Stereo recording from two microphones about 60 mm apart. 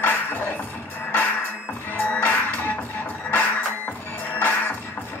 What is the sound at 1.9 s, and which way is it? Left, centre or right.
Music, left.